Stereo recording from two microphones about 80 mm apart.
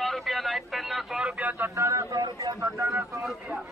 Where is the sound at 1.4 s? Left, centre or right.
Right.